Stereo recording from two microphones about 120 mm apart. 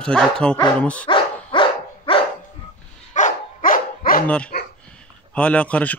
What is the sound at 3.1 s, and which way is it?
Dog, 90° left.